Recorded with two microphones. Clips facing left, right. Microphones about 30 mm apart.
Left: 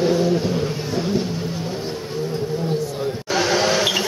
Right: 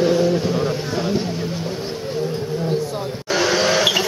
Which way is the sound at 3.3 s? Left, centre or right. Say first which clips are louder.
Right 2 dB; centre.